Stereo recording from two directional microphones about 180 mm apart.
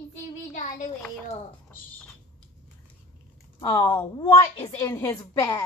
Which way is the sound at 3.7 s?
25° left (ahead or behind).